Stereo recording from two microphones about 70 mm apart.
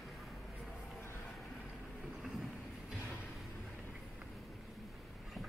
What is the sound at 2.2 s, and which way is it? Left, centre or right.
Vehicle, centre.